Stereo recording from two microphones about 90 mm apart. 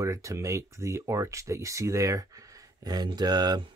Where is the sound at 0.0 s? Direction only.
35° right (ahead or behind).